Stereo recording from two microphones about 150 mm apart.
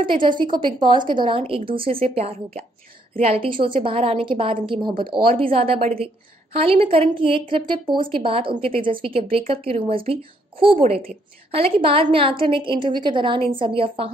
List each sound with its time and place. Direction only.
0.0 s a woman's voice: 35° right (ahead or behind)
11.5 s a woman's voice: 40° right (ahead or behind)